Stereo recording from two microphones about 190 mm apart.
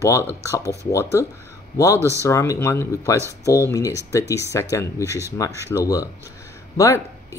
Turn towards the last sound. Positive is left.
turn(degrees=15)  # may be behind; listen again after turning